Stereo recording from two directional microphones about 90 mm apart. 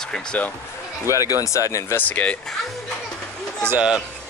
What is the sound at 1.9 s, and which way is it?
Speech, 20° left (ahead or behind).